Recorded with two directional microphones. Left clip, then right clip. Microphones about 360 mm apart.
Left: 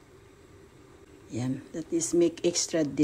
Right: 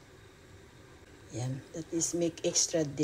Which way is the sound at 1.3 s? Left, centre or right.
Left.